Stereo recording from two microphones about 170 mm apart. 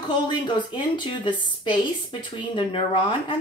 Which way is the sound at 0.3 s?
30° left (ahead or behind).